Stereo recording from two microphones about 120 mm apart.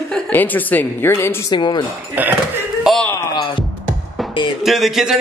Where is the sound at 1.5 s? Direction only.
35° left (ahead or behind).